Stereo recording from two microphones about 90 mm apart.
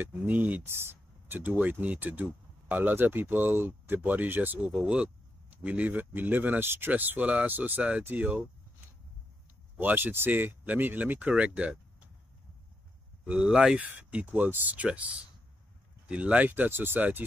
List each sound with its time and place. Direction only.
0.0 s speech: 20° right (ahead or behind)
9.8 s speech: 20° right (ahead or behind)
13.2 s speech: 10° right (ahead or behind)